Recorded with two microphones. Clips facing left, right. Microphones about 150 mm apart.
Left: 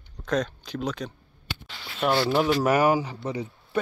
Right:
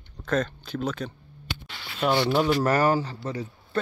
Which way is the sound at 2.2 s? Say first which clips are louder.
Even; 5° left (ahead or behind).